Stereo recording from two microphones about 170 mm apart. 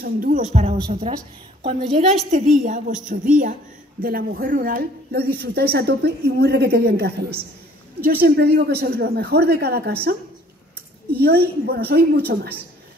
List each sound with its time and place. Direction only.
0.0 s a woman's voice: 55° right (ahead or behind)
0.5 s a woman's voice: 40° right (ahead or behind)
4.0 s a woman's voice: 60° right (ahead or behind)
11.1 s a woman's voice: 65° right (ahead or behind)